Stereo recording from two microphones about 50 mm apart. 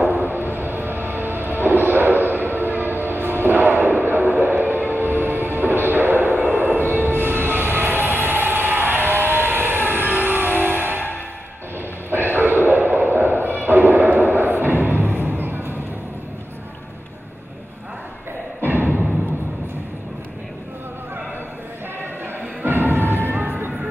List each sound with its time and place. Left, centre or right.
0.0 s music: right
18.7 s music: right
22.6 s music: right
23.2 s a sound: right